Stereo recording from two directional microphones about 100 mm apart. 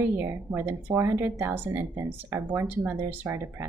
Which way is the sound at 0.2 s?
25° right (ahead or behind).